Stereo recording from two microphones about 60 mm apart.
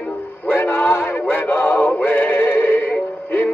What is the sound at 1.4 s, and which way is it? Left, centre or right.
Synthetic singing, left.